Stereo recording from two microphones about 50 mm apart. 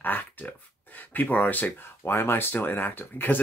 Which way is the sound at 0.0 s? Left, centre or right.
Left.